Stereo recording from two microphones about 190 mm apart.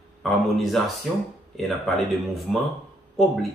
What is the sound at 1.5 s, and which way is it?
Speech, centre (ahead or behind).